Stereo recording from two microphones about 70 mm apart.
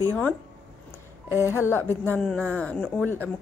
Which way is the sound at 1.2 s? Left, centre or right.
Left.